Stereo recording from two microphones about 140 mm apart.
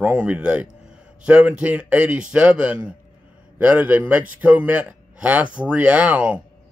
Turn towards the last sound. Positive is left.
turn(degrees=-10)  # may be behind; listen again after turning